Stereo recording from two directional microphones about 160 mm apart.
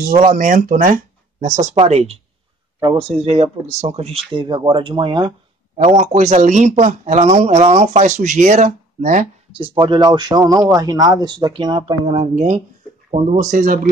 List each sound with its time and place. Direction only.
0.0 s speech: 55° right (ahead or behind); by 5.3 s 30° right (ahead or behind)
5.8 s speech: 45° right (ahead or behind)
9.5 s speech: 30° right (ahead or behind); by 13.7 s 55° right (ahead or behind)